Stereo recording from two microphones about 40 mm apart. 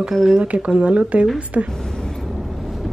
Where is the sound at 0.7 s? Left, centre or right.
Right.